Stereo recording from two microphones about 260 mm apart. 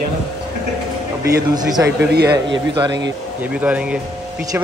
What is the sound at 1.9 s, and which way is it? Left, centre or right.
Speech, right.